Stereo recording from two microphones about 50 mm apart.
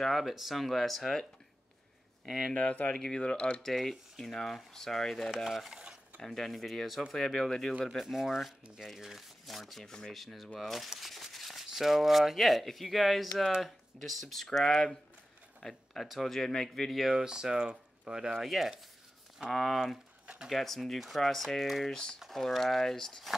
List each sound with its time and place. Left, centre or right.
0.0 s speech: centre
2.2 s speech: centre
2.5 s speech: left
3.7 s speech: centre
5.8 s dishes: centre
6.2 s speech: centre
8.1 s speech: centre
9.8 s speech: centre
17.1 s speech: centre